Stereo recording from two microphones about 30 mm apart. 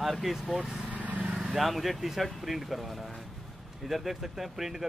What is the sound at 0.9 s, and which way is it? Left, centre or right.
Vehicle, right.